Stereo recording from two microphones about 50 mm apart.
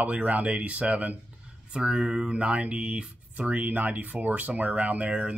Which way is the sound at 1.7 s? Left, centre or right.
Centre.